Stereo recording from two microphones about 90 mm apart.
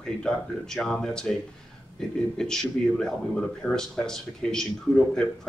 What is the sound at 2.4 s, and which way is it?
Speech, 5° left (ahead or behind).